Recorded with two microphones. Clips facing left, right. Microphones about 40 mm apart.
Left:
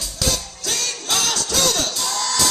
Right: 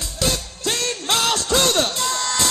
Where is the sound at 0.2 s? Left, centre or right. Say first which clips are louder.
Right 2 dB; right.